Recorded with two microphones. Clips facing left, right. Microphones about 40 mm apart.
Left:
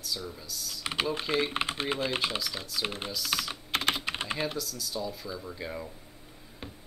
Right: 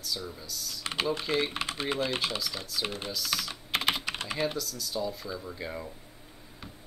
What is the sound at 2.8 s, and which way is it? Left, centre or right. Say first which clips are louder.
Speech: even; centre.